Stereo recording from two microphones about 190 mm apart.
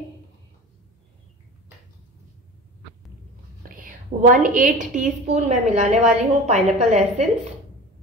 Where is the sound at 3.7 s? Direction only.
45° right (ahead or behind).